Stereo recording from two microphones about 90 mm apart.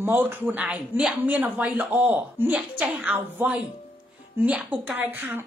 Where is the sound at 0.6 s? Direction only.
10° right (ahead or behind).